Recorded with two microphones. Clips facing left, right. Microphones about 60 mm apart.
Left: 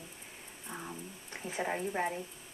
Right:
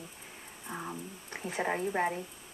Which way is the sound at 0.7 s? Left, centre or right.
Right.